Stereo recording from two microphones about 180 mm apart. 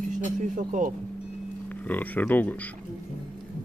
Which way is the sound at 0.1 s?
45° right (ahead or behind).